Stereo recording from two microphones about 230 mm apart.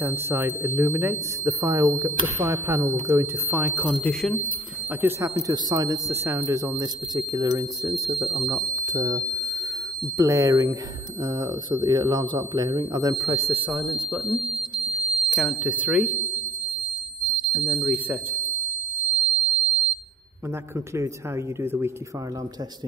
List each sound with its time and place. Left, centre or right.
0.0 s speech: centre
5.0 s speech: centre
17.6 s speech: centre
19.1 s alarm: centre
21.5 s speech: centre